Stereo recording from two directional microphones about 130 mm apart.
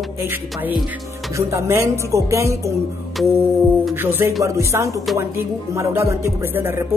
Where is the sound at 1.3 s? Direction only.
20° right (ahead or behind).